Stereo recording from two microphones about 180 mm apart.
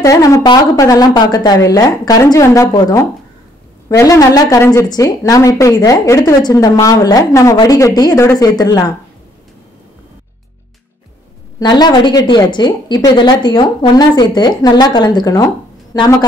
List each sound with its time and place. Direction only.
0.0 s a woman's voice: 20° left (ahead or behind)
4.0 s a woman's voice: 20° left (ahead or behind)
11.6 s a woman's voice: 25° left (ahead or behind)